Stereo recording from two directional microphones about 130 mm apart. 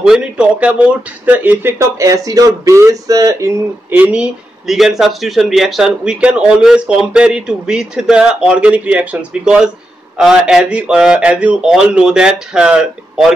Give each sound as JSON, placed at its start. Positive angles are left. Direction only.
{"t": 0.0, "sound": "speech", "side_deg": -5}
{"t": 3.9, "sound": "speech", "side_deg": -10}